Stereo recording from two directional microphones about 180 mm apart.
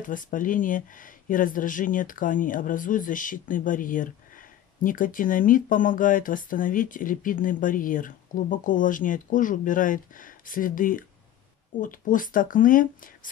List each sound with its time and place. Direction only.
0.0 s speech: 50° left (ahead or behind)